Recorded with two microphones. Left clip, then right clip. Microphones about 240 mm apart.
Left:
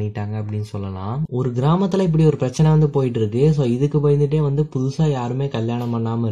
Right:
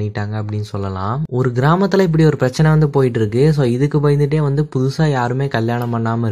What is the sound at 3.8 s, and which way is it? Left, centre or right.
Speech, right.